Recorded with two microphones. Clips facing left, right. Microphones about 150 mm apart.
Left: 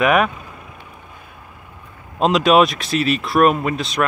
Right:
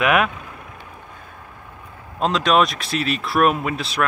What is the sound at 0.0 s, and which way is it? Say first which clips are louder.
Speech: left 2 dB; centre (ahead or behind).